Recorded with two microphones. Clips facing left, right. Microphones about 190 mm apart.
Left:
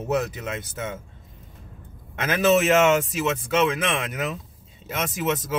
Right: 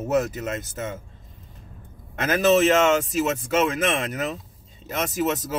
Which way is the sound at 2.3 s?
40° right (ahead or behind).